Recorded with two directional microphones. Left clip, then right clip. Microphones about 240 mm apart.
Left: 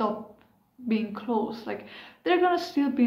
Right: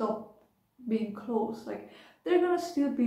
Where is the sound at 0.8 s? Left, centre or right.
Left.